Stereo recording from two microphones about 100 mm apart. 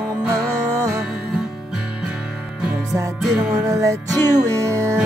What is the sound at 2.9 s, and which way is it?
Music, 30° right (ahead or behind).